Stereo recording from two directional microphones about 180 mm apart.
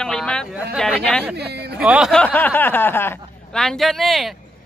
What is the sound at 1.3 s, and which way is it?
Speech, 65° right (ahead or behind).